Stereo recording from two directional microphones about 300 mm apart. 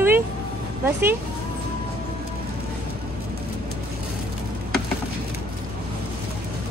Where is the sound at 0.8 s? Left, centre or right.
Centre.